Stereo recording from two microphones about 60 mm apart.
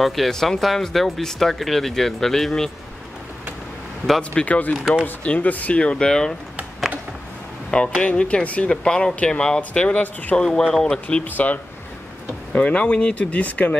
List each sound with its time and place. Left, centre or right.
0.0 s speech: centre
4.2 s speech: left
4.7 s speech: centre
5.2 s speech: left
7.7 s speech: centre
10.4 s speech: centre
11.2 s speech: left